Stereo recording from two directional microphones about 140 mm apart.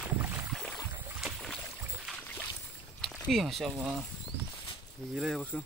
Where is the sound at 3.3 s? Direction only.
Centre (ahead or behind).